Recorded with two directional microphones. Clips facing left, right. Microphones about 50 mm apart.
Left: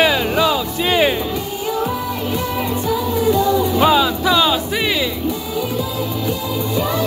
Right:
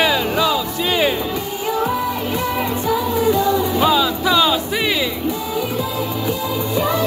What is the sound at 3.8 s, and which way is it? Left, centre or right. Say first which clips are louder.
Music: left 3 dB; left.